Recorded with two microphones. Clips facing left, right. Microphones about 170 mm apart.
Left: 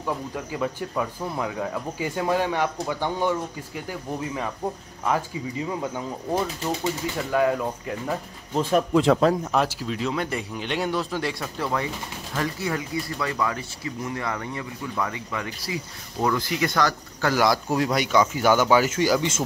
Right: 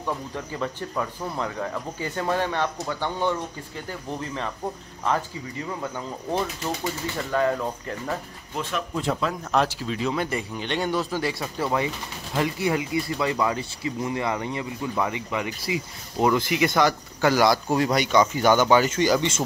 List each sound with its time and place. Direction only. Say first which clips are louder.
0.0 s speech: left 1 dB; 10° left (ahead or behind)
8.9 s speech: left 8 dB; 90° left
9.4 s speech: even; 5° left (ahead or behind); by 17.3 s 15° right (ahead or behind)
17.3 s speech: right 1 dB; centre (ahead or behind)